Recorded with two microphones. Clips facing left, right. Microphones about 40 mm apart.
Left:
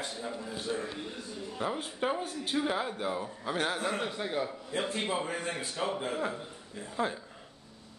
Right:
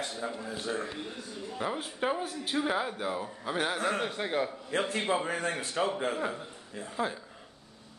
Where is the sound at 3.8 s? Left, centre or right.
Right.